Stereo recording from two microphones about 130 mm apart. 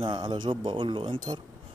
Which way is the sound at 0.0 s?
40° right (ahead or behind).